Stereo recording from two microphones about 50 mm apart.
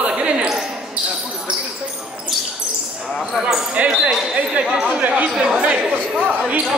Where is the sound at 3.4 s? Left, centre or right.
Centre.